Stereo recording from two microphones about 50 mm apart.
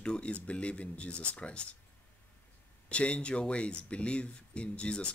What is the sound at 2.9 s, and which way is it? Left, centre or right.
A man's voice, left.